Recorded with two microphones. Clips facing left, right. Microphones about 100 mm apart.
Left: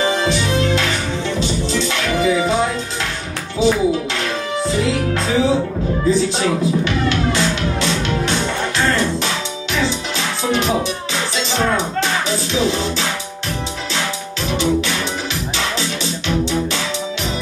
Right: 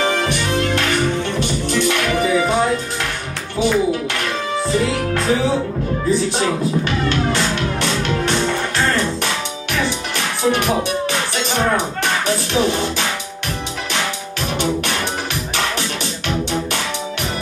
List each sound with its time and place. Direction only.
0.0 s music: 55° right (ahead or behind)
1.7 s music: 55° right (ahead or behind)
11.7 s speech: 55° right (ahead or behind)